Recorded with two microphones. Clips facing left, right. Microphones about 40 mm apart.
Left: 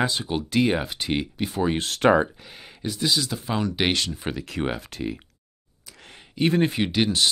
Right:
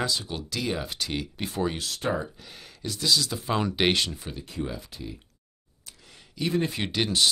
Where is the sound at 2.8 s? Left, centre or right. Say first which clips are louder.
Left 1 dB; centre.